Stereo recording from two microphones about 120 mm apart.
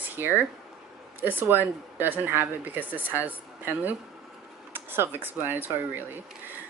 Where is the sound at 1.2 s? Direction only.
15° right (ahead or behind).